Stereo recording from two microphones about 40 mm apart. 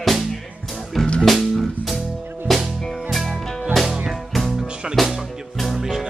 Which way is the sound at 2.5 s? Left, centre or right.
Centre.